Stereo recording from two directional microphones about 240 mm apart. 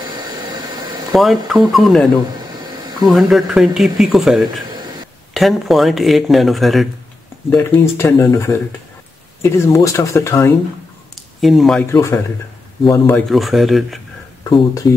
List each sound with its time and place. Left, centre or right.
0.5 s a sound: centre
1.1 s speech: centre
2.3 s a sound: centre
3.1 s speech: centre
11.4 s speech: centre
14.6 s speech: centre